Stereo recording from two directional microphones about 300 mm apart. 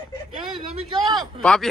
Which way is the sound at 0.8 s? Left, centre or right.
Centre.